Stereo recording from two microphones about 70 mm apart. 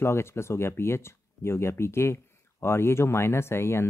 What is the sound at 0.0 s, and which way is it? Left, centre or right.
Speech, left.